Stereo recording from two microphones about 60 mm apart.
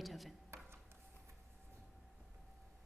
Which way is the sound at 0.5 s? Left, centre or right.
Right.